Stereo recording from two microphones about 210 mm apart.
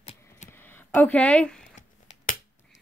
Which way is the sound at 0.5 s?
10° left (ahead or behind).